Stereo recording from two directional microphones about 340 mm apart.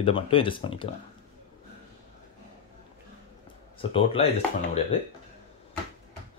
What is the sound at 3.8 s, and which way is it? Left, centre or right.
Speech, centre.